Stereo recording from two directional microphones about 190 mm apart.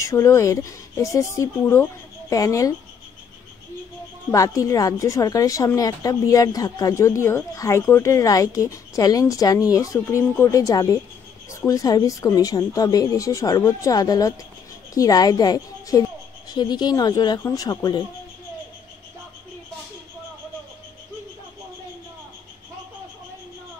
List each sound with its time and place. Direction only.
0.0 s a woman's voice: 15° left (ahead or behind)
4.3 s a woman's voice: 15° left (ahead or behind)